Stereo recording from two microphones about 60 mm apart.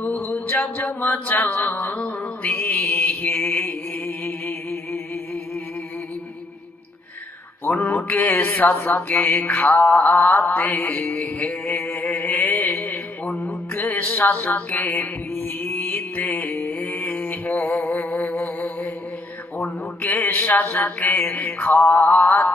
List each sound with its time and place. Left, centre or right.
0.3 s mantra: left
7.9 s mantra: left
8.4 s a sound: left
9.3 s music: left
9.9 s a sound: left
10.5 s music: left
11.4 s a sound: left
12.4 s music: left
16.3 s mantra: left
17.3 s music: left
19.6 s mantra: left
21.9 s mantra: left
22.2 s music: left